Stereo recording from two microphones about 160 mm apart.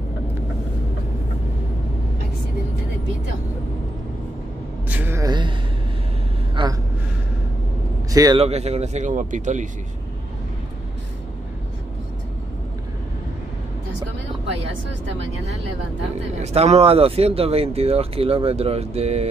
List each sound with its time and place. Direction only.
4.8 s a sound: 10° right (ahead or behind)
5.2 s a woman's voice: 25° right (ahead or behind)
6.5 s gasp: 30° right (ahead or behind)
8.1 s a man's voice: 25° right (ahead or behind)
8.4 s speech: 40° right (ahead or behind)
16.5 s speech: 40° right (ahead or behind)